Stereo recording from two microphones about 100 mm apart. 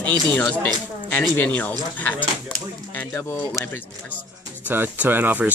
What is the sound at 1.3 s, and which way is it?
Speech, 15° left (ahead or behind).